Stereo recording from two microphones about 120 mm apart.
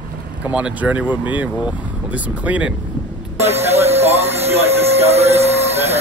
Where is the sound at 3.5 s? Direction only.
60° right (ahead or behind).